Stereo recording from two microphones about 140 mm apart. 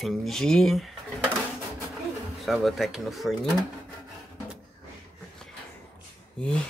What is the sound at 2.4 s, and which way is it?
Speech, centre (ahead or behind).